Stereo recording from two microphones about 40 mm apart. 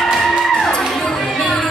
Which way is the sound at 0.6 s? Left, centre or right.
Centre.